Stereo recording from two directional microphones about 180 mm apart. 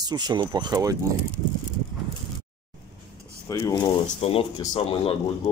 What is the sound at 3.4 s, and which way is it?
Speech, 20° left (ahead or behind).